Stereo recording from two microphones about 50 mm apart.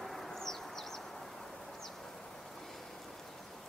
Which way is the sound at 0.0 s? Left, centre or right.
Centre.